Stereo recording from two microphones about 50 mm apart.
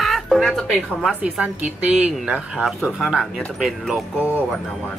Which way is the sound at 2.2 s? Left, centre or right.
Centre.